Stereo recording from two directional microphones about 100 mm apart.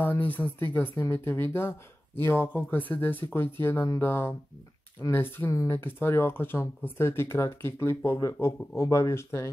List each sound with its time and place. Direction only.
0.0 s speech: 20° left (ahead or behind)